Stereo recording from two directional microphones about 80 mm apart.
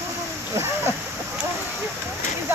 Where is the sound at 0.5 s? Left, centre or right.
Right.